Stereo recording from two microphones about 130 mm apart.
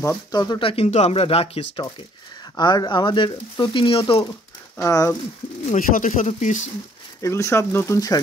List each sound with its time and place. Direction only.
0.3 s speech: 35° left (ahead or behind)
0.7 s speech: 55° left (ahead or behind)
2.5 s speech: 30° left (ahead or behind)
4.7 s speech: 25° left (ahead or behind)
5.7 s speech: 85° left; by 6.7 s 65° left (ahead or behind)
7.2 s speech: 20° left (ahead or behind)